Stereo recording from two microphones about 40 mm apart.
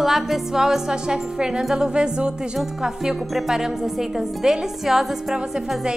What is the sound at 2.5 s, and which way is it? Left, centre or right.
A woman's voice, centre.